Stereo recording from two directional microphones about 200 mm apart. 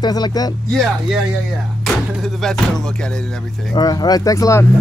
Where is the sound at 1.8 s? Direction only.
Centre (ahead or behind).